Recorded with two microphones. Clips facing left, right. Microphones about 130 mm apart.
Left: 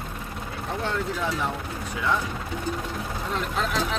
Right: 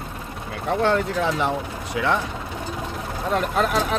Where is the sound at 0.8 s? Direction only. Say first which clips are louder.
Right 7 dB; 75° right (ahead or behind).